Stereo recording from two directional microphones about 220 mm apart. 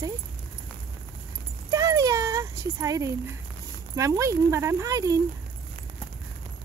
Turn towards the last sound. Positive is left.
turn(degrees=-15)  # may be behind; listen again after turning